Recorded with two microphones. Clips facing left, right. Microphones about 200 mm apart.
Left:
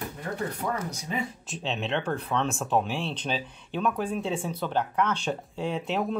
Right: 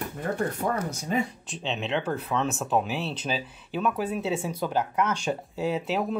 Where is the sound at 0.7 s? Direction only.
50° right (ahead or behind).